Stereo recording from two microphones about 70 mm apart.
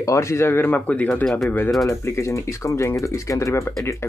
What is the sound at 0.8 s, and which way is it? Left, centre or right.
Speech, centre.